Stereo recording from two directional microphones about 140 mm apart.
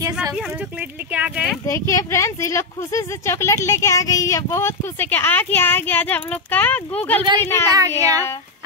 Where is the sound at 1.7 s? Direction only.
20° left (ahead or behind).